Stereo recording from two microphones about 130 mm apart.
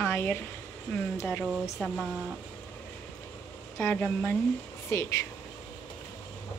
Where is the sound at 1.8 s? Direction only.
10° left (ahead or behind).